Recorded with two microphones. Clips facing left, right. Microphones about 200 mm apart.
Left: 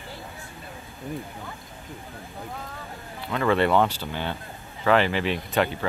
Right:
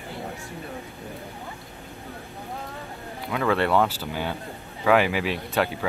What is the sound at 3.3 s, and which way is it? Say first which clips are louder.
Speech: left 1 dB; centre (ahead or behind).